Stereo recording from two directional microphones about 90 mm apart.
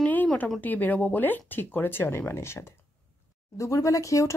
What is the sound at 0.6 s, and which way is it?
Speech, 20° left (ahead or behind).